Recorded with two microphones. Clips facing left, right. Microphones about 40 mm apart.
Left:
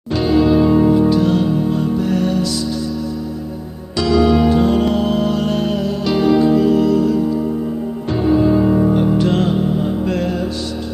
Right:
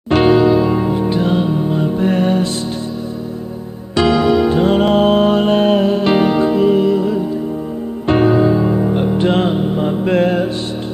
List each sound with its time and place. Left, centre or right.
0.1 s music: right
0.7 s music: centre
2.0 s music: right
3.9 s music: right
8.1 s music: right
9.2 s music: right